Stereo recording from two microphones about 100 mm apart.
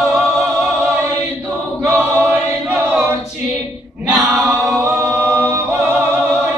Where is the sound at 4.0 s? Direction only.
10° right (ahead or behind).